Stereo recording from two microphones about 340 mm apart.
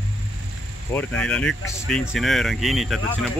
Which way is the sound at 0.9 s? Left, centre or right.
Centre.